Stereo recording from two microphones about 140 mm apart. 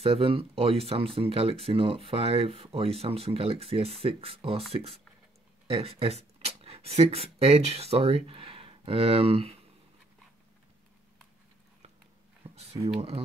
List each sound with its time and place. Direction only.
0.0 s speech: 45° right (ahead or behind)
12.4 s a sound: 45° right (ahead or behind)
12.8 s speech: 45° right (ahead or behind)